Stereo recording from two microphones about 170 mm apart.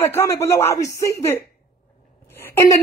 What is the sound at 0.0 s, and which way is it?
A woman's voice, 15° left (ahead or behind).